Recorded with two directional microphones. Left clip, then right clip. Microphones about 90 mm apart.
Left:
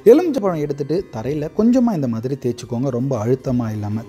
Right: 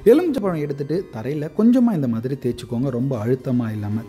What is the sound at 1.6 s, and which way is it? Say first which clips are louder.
Speech: left 1 dB; 30° left (ahead or behind).